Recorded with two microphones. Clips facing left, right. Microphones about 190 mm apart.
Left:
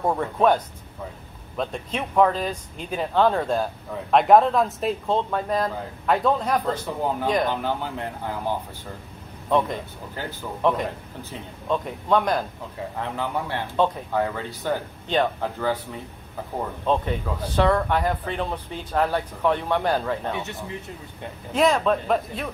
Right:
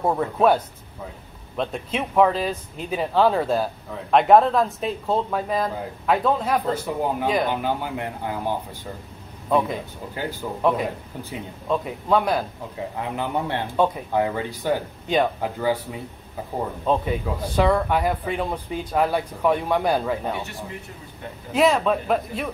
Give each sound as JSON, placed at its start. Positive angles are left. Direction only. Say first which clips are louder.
{"t": 0.0, "sound": "speech", "louder": "right 1 dB", "side_deg": -5}
{"t": 1.6, "sound": "speech", "louder": "right 2 dB", "side_deg": -5}
{"t": 16.8, "sound": "speech", "louder": "right 1 dB", "side_deg": -10}
{"t": 21.5, "sound": "speech", "louder": "right 1 dB", "side_deg": -5}